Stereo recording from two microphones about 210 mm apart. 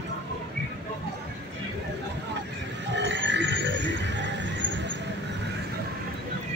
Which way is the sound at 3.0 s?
55° right (ahead or behind).